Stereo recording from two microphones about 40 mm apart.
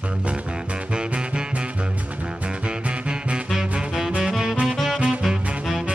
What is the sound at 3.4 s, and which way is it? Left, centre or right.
Music, centre.